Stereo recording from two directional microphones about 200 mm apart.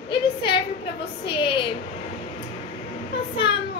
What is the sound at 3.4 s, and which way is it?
Speech, 55° left (ahead or behind).